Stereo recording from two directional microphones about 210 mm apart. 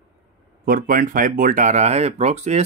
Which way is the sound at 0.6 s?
40° right (ahead or behind).